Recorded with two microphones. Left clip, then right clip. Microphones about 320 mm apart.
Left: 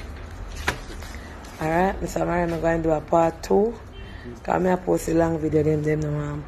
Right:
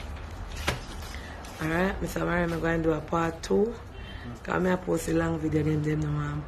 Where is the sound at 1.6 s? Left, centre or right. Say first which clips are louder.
Left 6 dB; centre.